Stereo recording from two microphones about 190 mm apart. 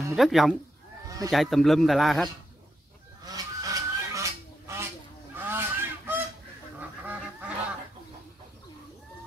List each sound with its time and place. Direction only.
0.1 s a man's voice: centre (ahead or behind)
1.0 s a sound: 15° right (ahead or behind)
1.3 s a man's voice: centre (ahead or behind)
3.3 s goose: 20° right (ahead or behind)